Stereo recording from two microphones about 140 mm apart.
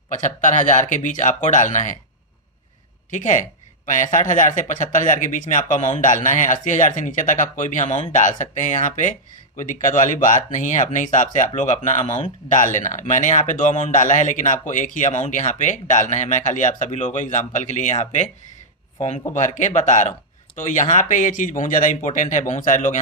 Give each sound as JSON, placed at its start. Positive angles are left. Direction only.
{"t": 0.1, "sound": "speech", "side_deg": 65}
{"t": 3.1, "sound": "speech", "side_deg": 60}
{"t": 19.3, "sound": "speech", "side_deg": 60}